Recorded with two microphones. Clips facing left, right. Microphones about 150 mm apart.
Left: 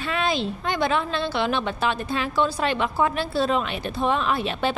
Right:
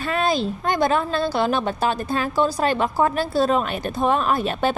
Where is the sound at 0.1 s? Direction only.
40° right (ahead or behind).